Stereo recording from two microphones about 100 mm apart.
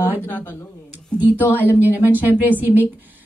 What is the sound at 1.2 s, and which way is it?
A woman's voice, 15° right (ahead or behind).